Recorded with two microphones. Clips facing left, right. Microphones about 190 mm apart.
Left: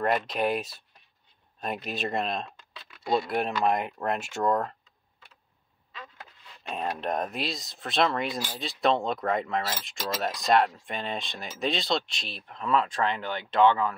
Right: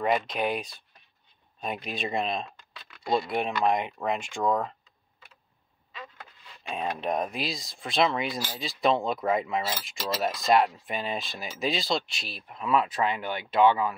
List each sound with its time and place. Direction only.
0.0 s speech: centre (ahead or behind)
6.7 s speech: centre (ahead or behind)